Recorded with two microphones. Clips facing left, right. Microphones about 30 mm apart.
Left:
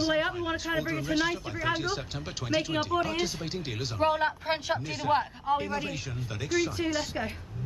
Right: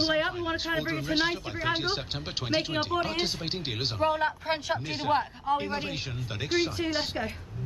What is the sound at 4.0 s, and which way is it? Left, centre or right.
A man's voice, centre.